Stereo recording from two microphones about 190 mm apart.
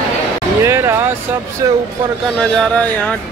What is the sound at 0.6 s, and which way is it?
Speech, 15° right (ahead or behind).